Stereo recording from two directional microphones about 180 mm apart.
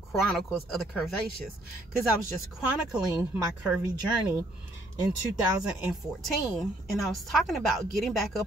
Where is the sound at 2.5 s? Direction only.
5° right (ahead or behind).